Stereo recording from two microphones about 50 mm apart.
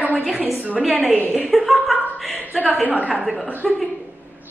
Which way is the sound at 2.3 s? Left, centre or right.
Right.